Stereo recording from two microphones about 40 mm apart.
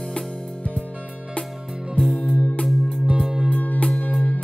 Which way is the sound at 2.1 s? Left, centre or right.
Left.